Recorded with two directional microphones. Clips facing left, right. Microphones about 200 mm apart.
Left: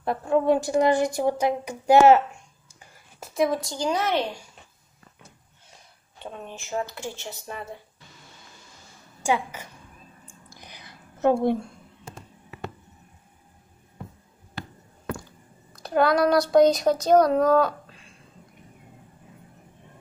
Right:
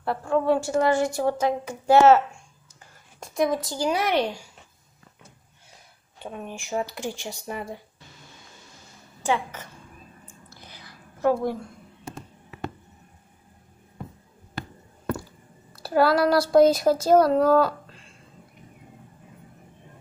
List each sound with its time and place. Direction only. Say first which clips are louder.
0.0 s a woman's voice: left 1 dB; 20° left (ahead or behind)
3.2 s speech: even; centre (ahead or behind)
6.2 s speech: right 2 dB; 10° right (ahead or behind)
9.2 s a woman's voice: left 1 dB; 10° left (ahead or behind)
10.2 s a sound: even; 15° left (ahead or behind)
15.8 s speech: right 1 dB; 5° right (ahead or behind)